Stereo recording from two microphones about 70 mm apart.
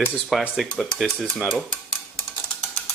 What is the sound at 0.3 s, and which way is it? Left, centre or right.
Speech, centre.